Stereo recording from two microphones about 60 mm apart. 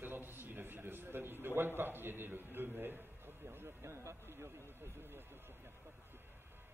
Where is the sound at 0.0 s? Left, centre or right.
Right.